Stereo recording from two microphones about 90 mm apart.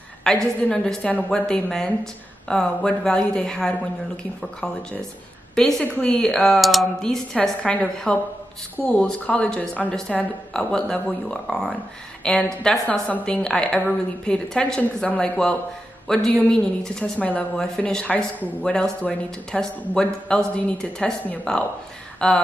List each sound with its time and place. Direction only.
0.2 s speech: 5° left (ahead or behind)
5.6 s speech: 10° left (ahead or behind)